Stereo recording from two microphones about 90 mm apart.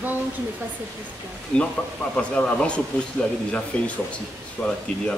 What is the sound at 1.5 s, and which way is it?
Speech, 10° left (ahead or behind).